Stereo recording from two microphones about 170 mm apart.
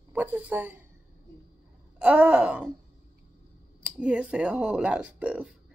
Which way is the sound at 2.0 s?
10° right (ahead or behind).